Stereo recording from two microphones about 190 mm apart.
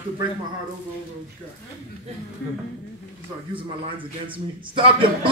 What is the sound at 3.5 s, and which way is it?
Speech, 25° right (ahead or behind).